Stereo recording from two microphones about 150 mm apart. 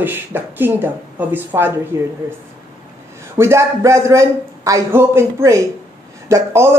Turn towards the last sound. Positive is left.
turn(degrees=-20)  # may be behind; listen again after turning